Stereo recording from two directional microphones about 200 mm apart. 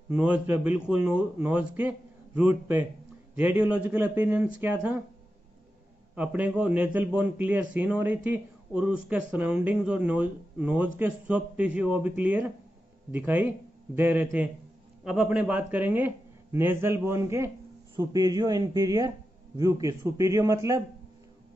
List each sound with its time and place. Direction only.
0.1 s speech: 5° right (ahead or behind)
6.1 s speech: 5° right (ahead or behind)